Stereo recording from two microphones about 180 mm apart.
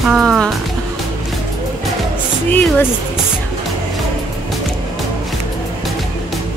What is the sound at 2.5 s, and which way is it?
Speech, 10° left (ahead or behind).